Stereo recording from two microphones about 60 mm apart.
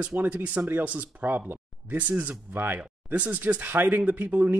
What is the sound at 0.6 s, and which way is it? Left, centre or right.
Speech, right.